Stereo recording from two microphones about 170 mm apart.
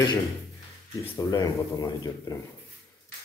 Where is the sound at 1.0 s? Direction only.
15° left (ahead or behind).